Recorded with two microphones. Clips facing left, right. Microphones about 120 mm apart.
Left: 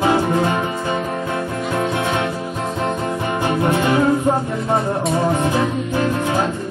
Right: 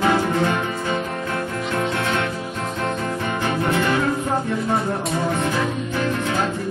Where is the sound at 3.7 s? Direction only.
20° left (ahead or behind).